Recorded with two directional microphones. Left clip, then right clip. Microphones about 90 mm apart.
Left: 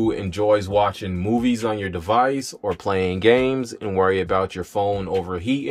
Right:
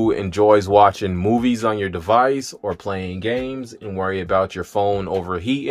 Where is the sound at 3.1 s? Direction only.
30° left (ahead or behind).